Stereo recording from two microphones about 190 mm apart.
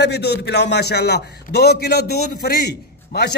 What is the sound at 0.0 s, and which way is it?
A man's voice, 60° left (ahead or behind).